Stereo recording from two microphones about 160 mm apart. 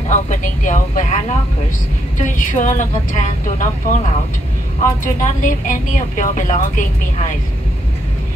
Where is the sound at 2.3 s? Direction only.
55° left (ahead or behind).